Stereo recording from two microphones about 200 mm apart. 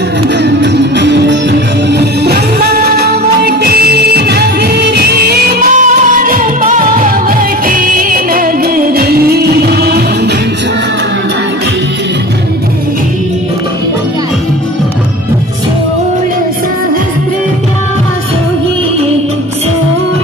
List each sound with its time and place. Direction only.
0.4 s music: 60° right (ahead or behind)